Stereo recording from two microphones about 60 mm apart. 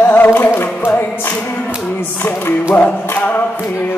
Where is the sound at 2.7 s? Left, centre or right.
Left.